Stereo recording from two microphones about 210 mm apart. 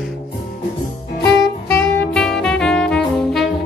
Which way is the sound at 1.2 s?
15° left (ahead or behind).